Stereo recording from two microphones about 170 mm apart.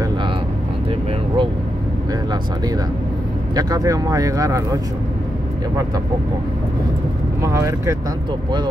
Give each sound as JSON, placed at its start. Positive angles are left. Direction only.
{"t": 3.5, "sound": "speech", "side_deg": -20}
{"t": 7.4, "sound": "speech", "side_deg": -20}